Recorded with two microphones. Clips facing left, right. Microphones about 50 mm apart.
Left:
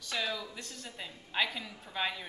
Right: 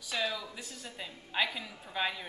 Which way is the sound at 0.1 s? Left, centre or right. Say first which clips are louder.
Right 1 dB; centre.